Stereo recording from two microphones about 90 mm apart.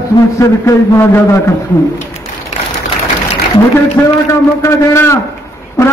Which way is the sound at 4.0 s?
30° left (ahead or behind).